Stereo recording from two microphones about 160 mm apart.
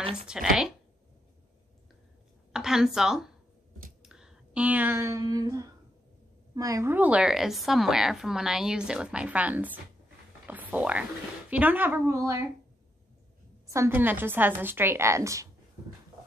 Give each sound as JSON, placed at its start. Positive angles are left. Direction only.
{"t": 0.3, "sound": "a woman's voice", "side_deg": -5}
{"t": 2.5, "sound": "a woman's voice", "side_deg": -5}
{"t": 13.7, "sound": "a woman's voice", "side_deg": -15}